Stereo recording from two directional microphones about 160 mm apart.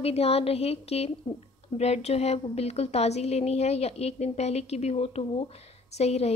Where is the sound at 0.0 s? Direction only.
40° left (ahead or behind).